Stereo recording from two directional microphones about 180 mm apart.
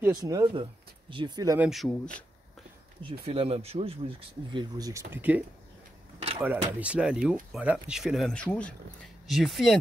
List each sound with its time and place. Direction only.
0.2 s speech: 20° right (ahead or behind)
1.6 s speech: centre (ahead or behind)
3.1 s speech: 30° right (ahead or behind); by 5.4 s 10° right (ahead or behind)
6.4 s speech: 10° right (ahead or behind)